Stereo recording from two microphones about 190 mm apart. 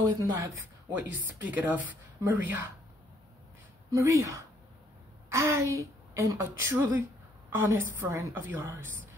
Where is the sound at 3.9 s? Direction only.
15° right (ahead or behind).